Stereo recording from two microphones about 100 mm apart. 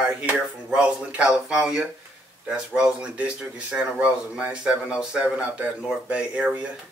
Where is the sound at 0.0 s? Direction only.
10° right (ahead or behind).